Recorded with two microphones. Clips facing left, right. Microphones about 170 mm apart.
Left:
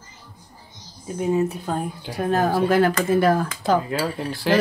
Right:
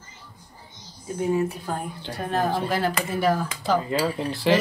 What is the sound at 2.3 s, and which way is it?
Speech, 45° left (ahead or behind).